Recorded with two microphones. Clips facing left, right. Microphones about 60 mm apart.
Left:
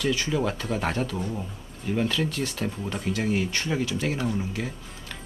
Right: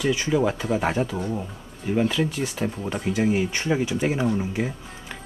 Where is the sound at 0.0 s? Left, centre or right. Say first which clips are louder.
Right 4 dB; centre.